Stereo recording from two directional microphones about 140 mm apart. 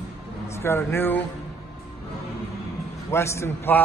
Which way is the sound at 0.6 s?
20° left (ahead or behind).